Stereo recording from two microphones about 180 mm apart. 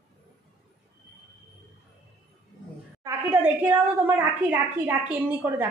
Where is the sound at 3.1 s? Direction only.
15° right (ahead or behind).